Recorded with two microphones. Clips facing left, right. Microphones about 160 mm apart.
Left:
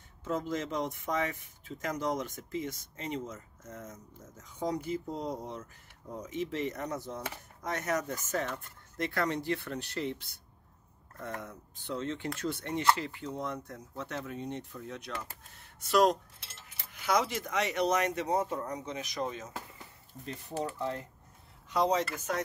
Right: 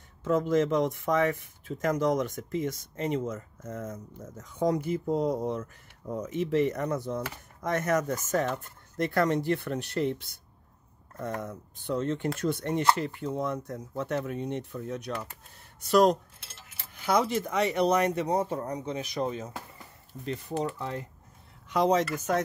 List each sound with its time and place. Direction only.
0.2 s speech: 60° right (ahead or behind)
14.8 s speech: 45° right (ahead or behind)
22.1 s speech: 45° right (ahead or behind)